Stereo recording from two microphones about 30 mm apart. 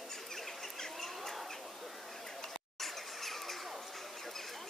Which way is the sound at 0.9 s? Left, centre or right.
Centre.